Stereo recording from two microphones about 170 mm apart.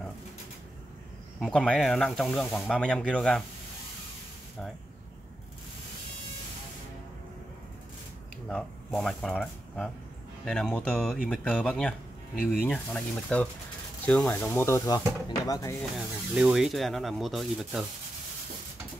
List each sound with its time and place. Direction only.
1.4 s speech: 5° left (ahead or behind)
8.5 s speech: centre (ahead or behind); by 15.7 s 20° left (ahead or behind)
16.3 s speech: 5° right (ahead or behind)